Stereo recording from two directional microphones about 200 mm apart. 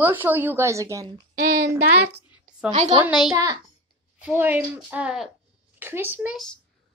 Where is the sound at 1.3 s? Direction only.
45° right (ahead or behind).